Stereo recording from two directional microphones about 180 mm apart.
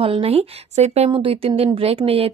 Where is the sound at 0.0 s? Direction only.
30° right (ahead or behind).